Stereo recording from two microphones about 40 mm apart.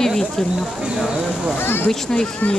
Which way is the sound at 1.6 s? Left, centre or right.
Left.